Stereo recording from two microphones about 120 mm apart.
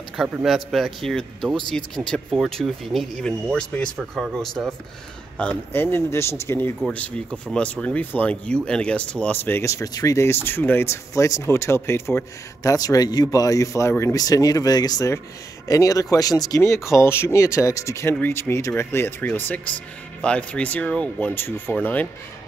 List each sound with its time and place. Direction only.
0.2 s speech: 5° right (ahead or behind)
5.4 s speech: 15° left (ahead or behind)
12.7 s speech: 30° left (ahead or behind); by 22.0 s 15° left (ahead or behind)